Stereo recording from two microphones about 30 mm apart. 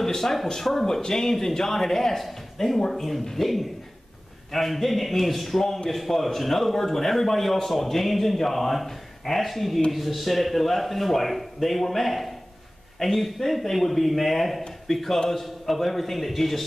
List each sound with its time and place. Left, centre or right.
0.0 s a man's voice: centre